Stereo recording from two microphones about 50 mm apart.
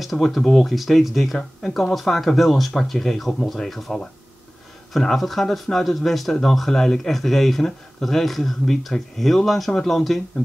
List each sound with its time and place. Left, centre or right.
0.0 s speech: centre